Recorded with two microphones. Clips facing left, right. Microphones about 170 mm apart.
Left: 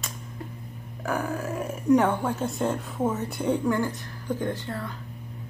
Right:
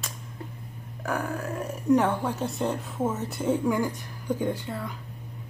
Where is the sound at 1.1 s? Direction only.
Centre (ahead or behind).